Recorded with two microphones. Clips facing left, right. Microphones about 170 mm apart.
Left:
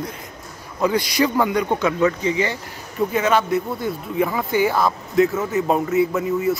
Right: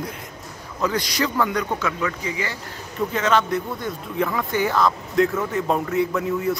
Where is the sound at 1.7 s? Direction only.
25° left (ahead or behind).